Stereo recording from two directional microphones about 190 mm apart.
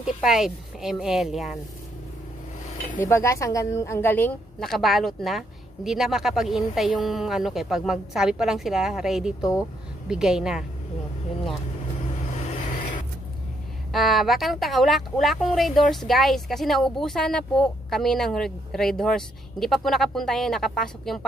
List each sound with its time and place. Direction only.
0.0 s speech: 5° right (ahead or behind)
3.0 s a woman's voice: 15° left (ahead or behind); by 10.6 s centre (ahead or behind)
12.4 s vehicle: 40° left (ahead or behind)
13.9 s speech: centre (ahead or behind)